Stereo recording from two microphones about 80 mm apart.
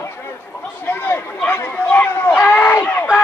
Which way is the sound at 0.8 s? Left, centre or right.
Left.